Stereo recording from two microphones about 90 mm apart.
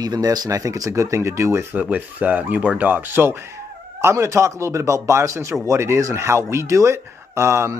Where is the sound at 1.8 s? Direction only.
15° right (ahead or behind).